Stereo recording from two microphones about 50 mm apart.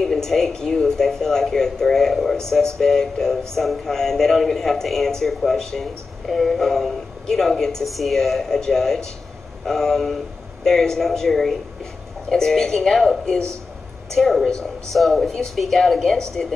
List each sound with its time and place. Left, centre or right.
0.0 s speech: centre